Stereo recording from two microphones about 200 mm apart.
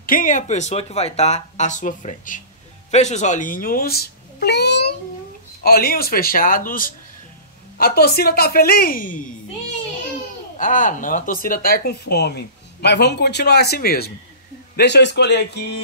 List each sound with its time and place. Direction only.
0.0 s speech: 40° left (ahead or behind)
10.6 s speech: 40° left (ahead or behind); by 15.8 s 55° left (ahead or behind)